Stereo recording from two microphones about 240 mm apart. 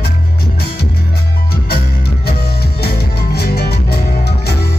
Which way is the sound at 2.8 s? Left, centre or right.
Left.